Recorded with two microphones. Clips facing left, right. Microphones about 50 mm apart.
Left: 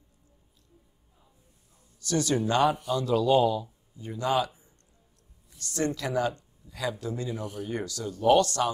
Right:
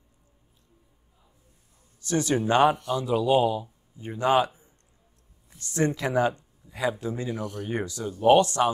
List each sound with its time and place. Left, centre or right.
2.0 s a man's voice: right
4.0 s speech: right
5.6 s speech: right